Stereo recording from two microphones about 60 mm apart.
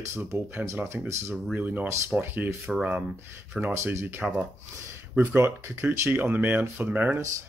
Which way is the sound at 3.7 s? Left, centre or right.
Right.